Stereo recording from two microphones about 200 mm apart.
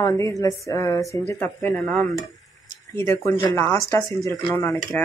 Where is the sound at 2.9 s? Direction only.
15° left (ahead or behind).